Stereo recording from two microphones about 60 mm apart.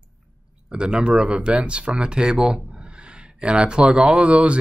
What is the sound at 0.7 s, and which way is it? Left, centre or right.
Speech, centre.